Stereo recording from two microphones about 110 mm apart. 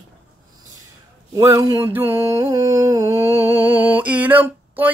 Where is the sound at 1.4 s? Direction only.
25° right (ahead or behind).